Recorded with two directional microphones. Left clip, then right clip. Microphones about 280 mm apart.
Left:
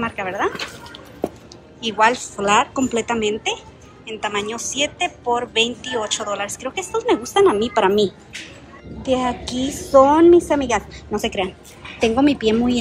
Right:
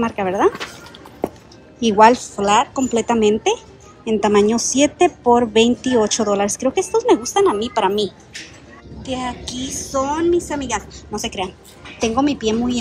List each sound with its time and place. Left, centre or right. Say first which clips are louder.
0.0 s a woman's voice: right 4 dB; centre
1.8 s a woman's voice: right 5 dB; centre